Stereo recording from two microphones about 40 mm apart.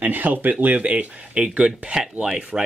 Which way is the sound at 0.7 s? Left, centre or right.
Right.